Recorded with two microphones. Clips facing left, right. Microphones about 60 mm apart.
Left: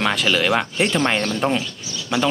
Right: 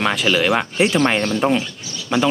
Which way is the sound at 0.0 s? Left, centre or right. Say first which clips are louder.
Right 2 dB; centre.